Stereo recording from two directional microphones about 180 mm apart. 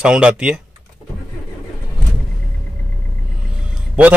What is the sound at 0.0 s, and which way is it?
Speech, 5° right (ahead or behind).